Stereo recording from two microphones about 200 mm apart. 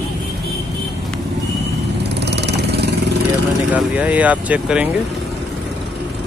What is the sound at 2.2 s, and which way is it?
Vehicle, 55° right (ahead or behind).